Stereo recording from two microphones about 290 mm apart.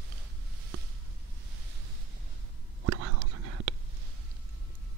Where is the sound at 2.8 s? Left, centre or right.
Right.